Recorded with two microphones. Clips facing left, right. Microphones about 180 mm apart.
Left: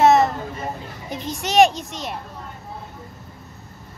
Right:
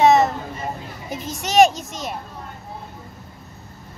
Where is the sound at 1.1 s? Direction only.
Centre (ahead or behind).